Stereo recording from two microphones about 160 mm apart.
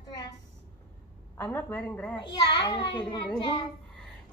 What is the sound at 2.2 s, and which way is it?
A child's voice, 30° left (ahead or behind).